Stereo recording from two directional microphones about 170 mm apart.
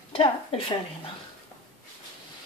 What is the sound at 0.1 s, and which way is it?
Speech, 30° left (ahead or behind).